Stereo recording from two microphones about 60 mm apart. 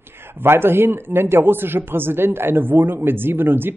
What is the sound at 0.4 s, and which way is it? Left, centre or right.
A man's voice, right.